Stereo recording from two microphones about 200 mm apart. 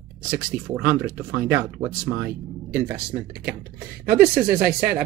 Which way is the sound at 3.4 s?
45° right (ahead or behind).